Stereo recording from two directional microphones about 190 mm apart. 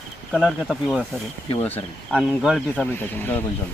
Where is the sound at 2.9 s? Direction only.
10° left (ahead or behind).